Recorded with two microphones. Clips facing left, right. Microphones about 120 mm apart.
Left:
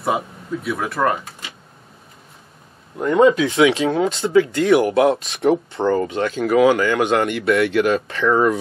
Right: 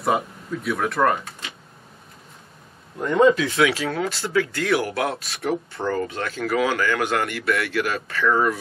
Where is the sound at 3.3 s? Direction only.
20° left (ahead or behind).